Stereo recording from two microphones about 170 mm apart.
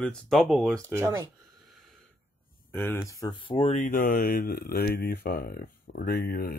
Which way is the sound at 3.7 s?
50° left (ahead or behind).